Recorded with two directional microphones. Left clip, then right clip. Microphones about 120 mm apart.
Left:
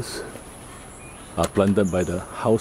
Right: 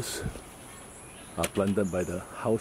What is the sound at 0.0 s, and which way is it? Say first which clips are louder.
Speech: left 4 dB; 5° right (ahead or behind).